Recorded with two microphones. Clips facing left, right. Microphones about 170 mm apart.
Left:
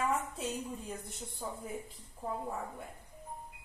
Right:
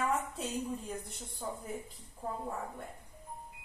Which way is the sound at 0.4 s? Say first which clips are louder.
Right 2 dB; centre (ahead or behind).